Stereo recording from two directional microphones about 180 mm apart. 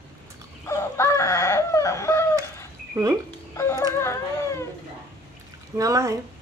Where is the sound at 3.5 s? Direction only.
15° left (ahead or behind).